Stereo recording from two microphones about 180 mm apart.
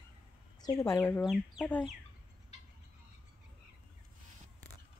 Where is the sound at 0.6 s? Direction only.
20° left (ahead or behind).